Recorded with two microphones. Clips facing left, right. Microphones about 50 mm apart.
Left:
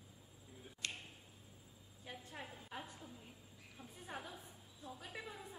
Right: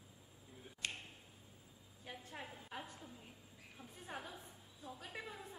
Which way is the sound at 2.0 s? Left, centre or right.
Centre.